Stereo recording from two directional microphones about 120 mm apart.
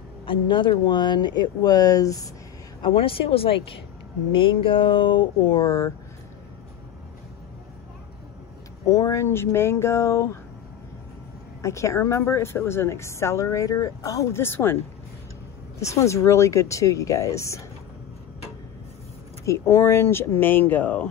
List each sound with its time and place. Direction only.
0.2 s speech: 45° left (ahead or behind); by 2.2 s 30° left (ahead or behind)
2.8 s speech: 50° left (ahead or behind); by 5.9 s 30° left (ahead or behind)
8.8 s a woman's voice: 30° left (ahead or behind)
11.6 s a woman's voice: 25° left (ahead or behind)
15.8 s a woman's voice: 25° left (ahead or behind)
19.4 s a woman's voice: 25° left (ahead or behind)